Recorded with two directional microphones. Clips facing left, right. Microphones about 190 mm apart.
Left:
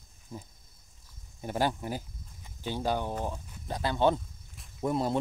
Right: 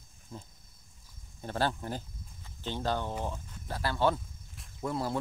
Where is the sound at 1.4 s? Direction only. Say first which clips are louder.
Left 2 dB; 15° left (ahead or behind).